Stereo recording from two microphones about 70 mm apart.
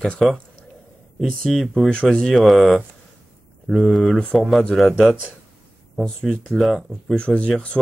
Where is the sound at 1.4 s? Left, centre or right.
Centre.